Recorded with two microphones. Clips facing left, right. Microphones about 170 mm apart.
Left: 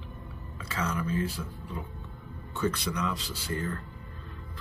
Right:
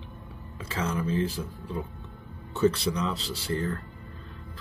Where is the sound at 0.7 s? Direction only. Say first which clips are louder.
Right 2 dB; 25° right (ahead or behind).